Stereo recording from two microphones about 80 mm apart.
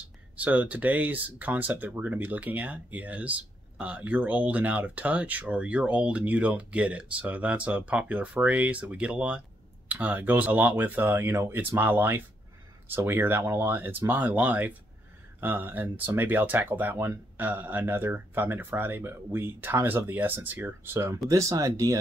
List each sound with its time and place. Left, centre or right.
0.4 s speech: centre
21.3 s speech: right